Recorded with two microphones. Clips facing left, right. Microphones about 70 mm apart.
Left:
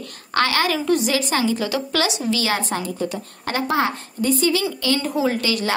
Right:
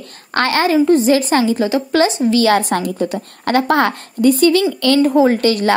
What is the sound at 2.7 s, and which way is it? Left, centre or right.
A woman's voice, right.